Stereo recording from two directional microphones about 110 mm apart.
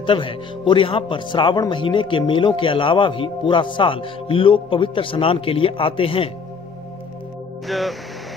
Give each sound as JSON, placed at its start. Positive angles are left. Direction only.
{"t": 0.0, "sound": "speech", "side_deg": 50}
{"t": 7.6, "sound": "speech", "side_deg": 0}